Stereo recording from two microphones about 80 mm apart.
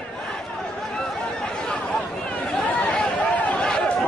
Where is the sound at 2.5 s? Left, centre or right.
Centre.